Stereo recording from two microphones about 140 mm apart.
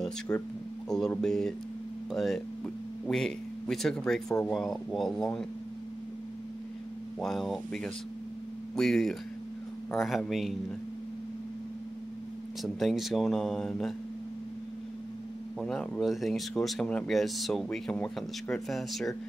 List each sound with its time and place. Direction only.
0.3 s speech: 15° left (ahead or behind)
0.8 s speech: 5° left (ahead or behind)
7.2 s speech: centre (ahead or behind)
12.6 s speech: centre (ahead or behind)
15.6 s speech: 5° left (ahead or behind)